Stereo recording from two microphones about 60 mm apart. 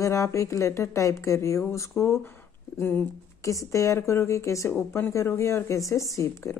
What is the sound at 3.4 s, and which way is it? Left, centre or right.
Speech, left.